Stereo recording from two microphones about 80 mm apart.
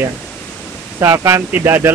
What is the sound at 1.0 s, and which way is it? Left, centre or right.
Speech, right.